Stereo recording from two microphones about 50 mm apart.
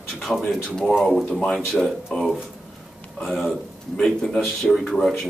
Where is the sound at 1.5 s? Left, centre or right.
Centre.